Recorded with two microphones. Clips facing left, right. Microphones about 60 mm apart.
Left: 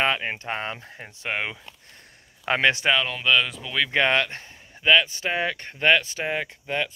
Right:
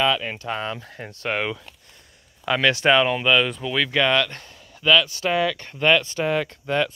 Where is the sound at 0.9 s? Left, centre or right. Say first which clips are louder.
Right 4 dB; centre.